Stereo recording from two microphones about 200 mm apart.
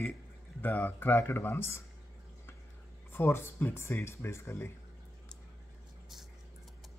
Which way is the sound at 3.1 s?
10° left (ahead or behind).